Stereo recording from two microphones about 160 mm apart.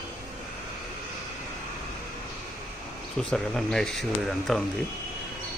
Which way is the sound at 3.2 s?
5° left (ahead or behind).